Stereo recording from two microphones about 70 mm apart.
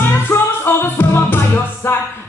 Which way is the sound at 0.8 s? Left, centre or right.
Left.